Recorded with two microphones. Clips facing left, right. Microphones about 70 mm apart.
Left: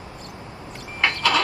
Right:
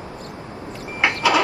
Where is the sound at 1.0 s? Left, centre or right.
Centre.